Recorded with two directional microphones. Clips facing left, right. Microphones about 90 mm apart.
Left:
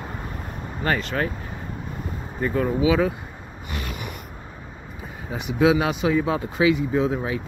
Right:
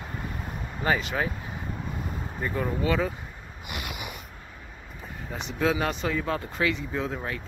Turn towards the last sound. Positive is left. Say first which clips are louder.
# left 8 dB
turn(degrees=10)  # may be behind; listen again after turning